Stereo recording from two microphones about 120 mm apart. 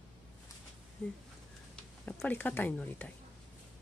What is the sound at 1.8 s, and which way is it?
Speech, 15° left (ahead or behind).